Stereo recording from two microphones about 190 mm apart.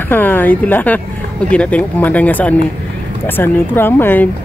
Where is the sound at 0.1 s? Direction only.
10° left (ahead or behind).